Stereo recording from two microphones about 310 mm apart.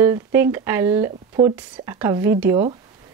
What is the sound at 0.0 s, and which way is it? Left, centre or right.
Speech, centre.